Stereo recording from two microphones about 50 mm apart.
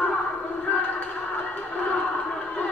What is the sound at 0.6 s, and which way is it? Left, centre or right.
Music, left.